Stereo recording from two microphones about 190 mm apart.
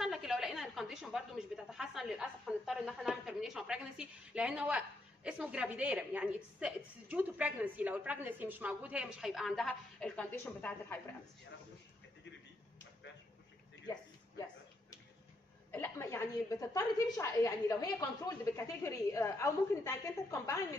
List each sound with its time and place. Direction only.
0.0 s a sound: centre (ahead or behind)
1.7 s a woman's voice: centre (ahead or behind)
15.7 s a woman's voice: 10° left (ahead or behind)